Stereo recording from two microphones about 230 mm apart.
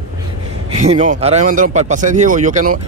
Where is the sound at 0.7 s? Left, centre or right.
Right.